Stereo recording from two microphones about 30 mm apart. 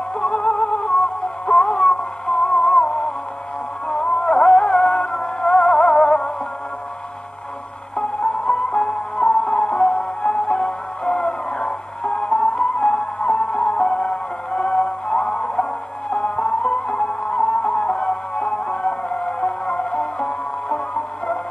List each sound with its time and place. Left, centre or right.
0.2 s music: left
7.9 s music: left